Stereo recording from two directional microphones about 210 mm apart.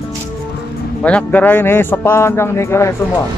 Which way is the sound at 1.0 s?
5° left (ahead or behind).